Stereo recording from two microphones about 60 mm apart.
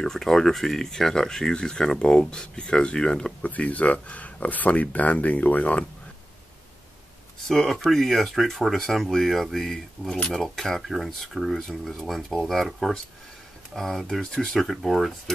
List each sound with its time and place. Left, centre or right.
0.0 s speech: centre
3.4 s speech: left
7.4 s speech: centre